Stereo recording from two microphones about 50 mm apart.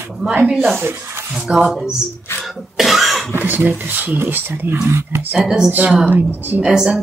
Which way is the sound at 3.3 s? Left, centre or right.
Right.